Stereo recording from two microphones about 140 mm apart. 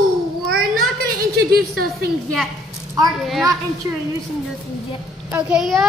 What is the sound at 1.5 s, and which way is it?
Speech, 90° right.